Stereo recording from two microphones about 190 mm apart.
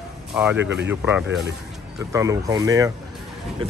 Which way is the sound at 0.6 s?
65° right (ahead or behind).